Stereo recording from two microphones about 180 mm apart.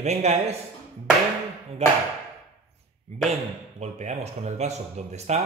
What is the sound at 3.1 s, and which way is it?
Speech, 40° right (ahead or behind).